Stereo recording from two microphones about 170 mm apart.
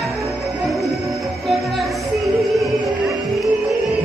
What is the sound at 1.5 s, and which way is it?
Music, centre (ahead or behind).